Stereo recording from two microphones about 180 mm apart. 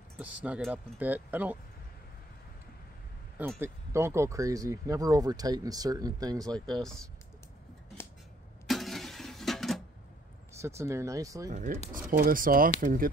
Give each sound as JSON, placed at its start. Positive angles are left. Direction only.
{"t": 0.2, "sound": "speech", "side_deg": -10}
{"t": 3.3, "sound": "speech", "side_deg": -10}
{"t": 6.5, "sound": "speech", "side_deg": 5}
{"t": 8.6, "sound": "a sound", "side_deg": 0}
{"t": 10.6, "sound": "speech", "side_deg": -15}
{"t": 11.5, "sound": "speech", "side_deg": -45}